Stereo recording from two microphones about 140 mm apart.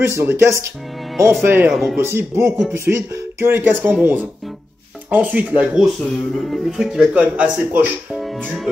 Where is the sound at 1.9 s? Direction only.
15° right (ahead or behind).